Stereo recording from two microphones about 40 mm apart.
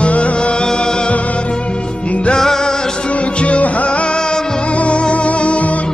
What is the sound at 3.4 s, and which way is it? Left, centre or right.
Music, left.